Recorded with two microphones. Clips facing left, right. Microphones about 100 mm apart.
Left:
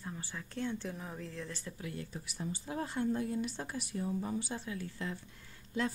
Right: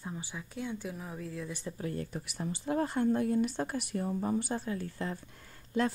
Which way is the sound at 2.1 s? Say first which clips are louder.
Right 3 dB; 60° right (ahead or behind).